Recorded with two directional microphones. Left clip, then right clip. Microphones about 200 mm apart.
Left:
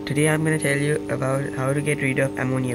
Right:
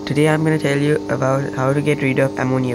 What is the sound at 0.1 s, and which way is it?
Speech, 5° right (ahead or behind).